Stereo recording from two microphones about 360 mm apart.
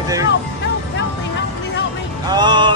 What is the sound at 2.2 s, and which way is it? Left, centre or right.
Music, centre.